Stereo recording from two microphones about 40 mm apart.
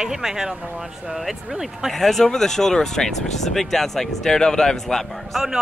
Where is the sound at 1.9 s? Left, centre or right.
Centre.